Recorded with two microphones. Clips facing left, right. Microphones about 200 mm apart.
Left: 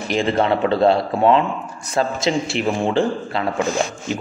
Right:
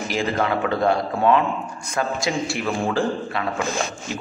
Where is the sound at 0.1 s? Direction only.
25° left (ahead or behind).